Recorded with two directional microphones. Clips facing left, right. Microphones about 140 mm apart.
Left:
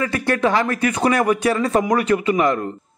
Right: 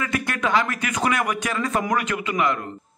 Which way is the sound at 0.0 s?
35° left (ahead or behind).